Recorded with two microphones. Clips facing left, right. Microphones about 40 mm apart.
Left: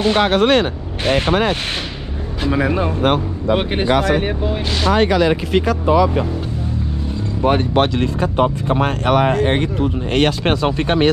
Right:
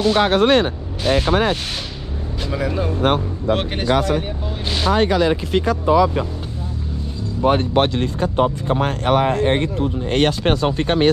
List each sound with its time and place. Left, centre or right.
0.2 s speech: left
2.5 s speech: left
4.0 s speech: left
4.9 s speech: left
7.4 s speech: left
8.2 s speech: left